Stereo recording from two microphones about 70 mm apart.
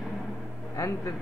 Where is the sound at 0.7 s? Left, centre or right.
Left.